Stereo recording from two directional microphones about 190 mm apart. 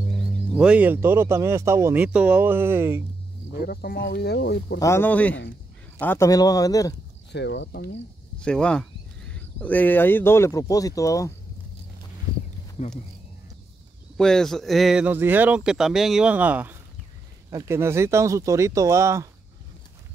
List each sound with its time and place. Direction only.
0.0 s speech: centre (ahead or behind)
3.6 s speech: 55° left (ahead or behind)
4.7 s speech: 15° left (ahead or behind)
7.3 s speech: 65° left (ahead or behind)
8.4 s speech: 5° left (ahead or behind)
14.1 s speech: centre (ahead or behind); by 19.2 s 15° right (ahead or behind)